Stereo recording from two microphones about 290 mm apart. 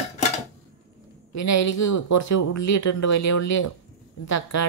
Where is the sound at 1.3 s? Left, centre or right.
Left.